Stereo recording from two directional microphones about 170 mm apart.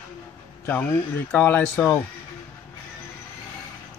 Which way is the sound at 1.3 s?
10° left (ahead or behind).